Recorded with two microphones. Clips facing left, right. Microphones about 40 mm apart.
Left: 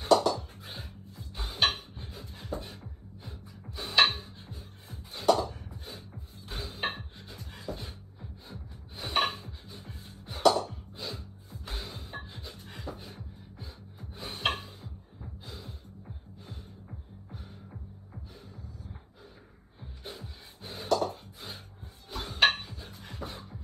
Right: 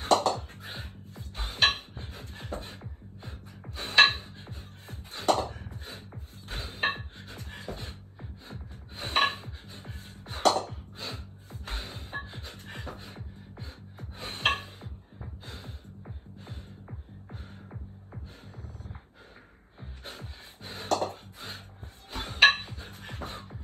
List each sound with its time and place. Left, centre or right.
0.0 s music: right
3.7 s dishes: right
15.4 s music: right
20.0 s music: right
22.1 s dishes: right